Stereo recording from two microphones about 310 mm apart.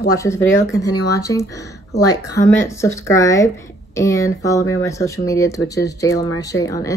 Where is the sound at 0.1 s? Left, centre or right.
Centre.